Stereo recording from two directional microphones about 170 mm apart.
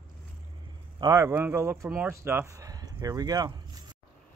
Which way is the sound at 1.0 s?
15° right (ahead or behind).